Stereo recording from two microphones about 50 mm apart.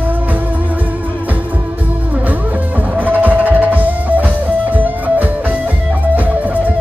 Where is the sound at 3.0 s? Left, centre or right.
Right.